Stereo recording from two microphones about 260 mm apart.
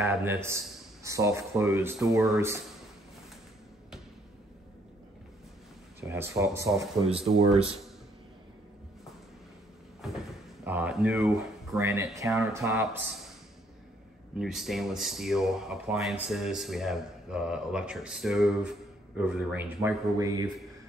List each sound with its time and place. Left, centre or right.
0.0 s speech: centre
5.9 s speech: centre
7.1 s speech: right
10.0 s a sound: centre
10.6 s speech: centre
14.4 s speech: centre